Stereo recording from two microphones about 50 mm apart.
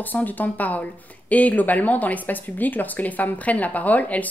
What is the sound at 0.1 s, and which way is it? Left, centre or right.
Speech, left.